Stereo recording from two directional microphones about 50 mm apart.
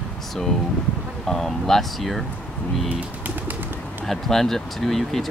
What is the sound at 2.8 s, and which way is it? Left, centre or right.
Bird, right.